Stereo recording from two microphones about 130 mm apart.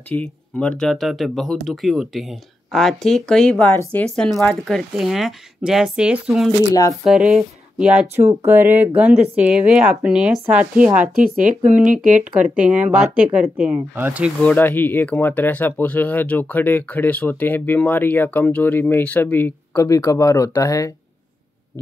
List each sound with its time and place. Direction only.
0.1 s speech: 10° left (ahead or behind)
6.7 s speech: 25° left (ahead or behind)
7.1 s speech: 5° right (ahead or behind)
11.8 s speech: 80° right
12.2 s speech: 10° right (ahead or behind)
14.4 s speech: 15° left (ahead or behind)
19.8 s speech: 25° left (ahead or behind)